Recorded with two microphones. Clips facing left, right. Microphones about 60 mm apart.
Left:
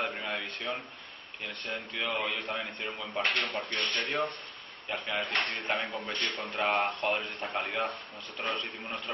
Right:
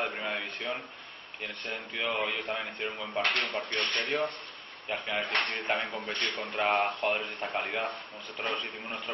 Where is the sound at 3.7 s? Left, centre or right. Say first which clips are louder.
Right 1 dB; right.